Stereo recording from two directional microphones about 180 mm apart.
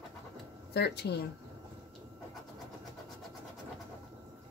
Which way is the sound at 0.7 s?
65° left (ahead or behind).